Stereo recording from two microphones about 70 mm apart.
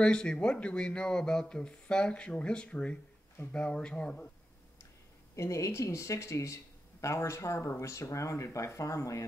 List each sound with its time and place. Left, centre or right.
0.0 s a man's voice: centre
5.3 s speech: left